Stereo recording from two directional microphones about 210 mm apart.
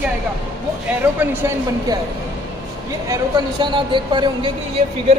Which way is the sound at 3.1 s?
20° right (ahead or behind).